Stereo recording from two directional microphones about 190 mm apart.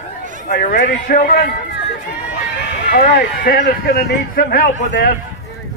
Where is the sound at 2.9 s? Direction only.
50° left (ahead or behind).